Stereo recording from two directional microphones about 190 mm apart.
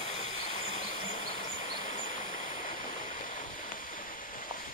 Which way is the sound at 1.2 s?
40° left (ahead or behind).